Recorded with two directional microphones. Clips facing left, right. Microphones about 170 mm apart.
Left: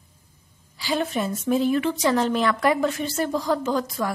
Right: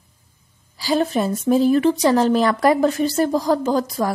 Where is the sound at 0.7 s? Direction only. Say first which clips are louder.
Right 6 dB; 40° right (ahead or behind).